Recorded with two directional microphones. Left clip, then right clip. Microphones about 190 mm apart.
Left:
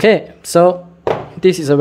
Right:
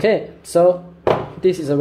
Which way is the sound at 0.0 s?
35° left (ahead or behind).